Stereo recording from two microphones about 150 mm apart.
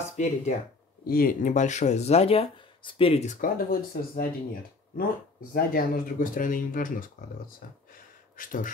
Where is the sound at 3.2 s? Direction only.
75° left (ahead or behind).